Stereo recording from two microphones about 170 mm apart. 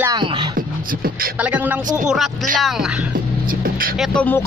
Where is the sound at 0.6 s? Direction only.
60° right (ahead or behind).